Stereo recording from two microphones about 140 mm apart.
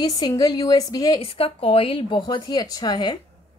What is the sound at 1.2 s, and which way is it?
A woman's voice, 40° left (ahead or behind).